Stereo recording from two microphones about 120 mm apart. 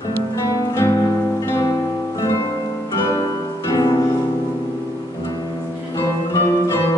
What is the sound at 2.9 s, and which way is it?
Music, 25° left (ahead or behind).